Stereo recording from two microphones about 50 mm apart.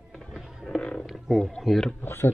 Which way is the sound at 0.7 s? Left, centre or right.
Centre.